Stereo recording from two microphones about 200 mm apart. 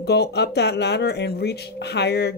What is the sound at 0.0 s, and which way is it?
Speech, 55° left (ahead or behind).